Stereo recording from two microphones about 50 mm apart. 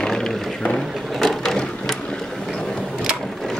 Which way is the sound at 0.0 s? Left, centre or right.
Centre.